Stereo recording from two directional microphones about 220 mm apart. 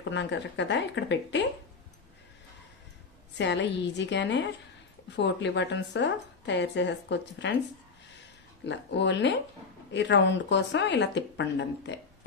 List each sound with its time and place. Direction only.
0.0 s speech: 55° left (ahead or behind)
3.3 s speech: 55° left (ahead or behind)
8.6 s speech: 55° left (ahead or behind)